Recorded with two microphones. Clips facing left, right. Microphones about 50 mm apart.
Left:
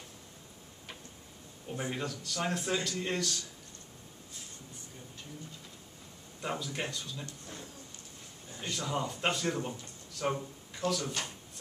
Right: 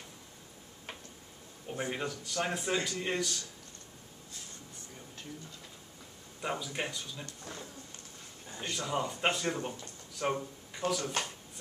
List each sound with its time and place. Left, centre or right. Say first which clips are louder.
1.7 s speech: right 1 dB; centre
6.4 s speech: right 1 dB; centre
8.5 s speech: right 1 dB; centre
11.0 s speech: right 2 dB; right